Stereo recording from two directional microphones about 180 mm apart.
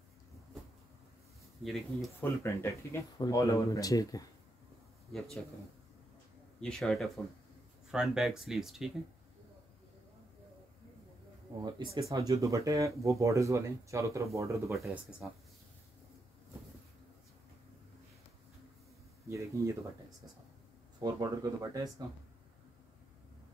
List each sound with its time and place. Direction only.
1.6 s speech: centre (ahead or behind)
2.1 s speech: 15° left (ahead or behind)
6.6 s speech: 5° left (ahead or behind)
11.6 s speech: 20° right (ahead or behind)
19.2 s speech: 15° right (ahead or behind)
21.0 s speech: 20° right (ahead or behind)